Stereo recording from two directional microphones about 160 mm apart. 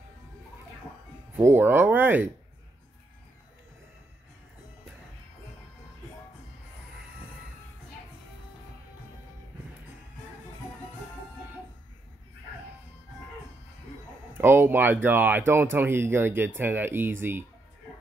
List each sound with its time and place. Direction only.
1.3 s speech: 10° right (ahead or behind)
14.3 s speech: 15° right (ahead or behind)